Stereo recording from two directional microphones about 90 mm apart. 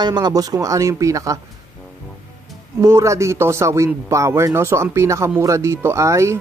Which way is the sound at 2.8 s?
35° right (ahead or behind).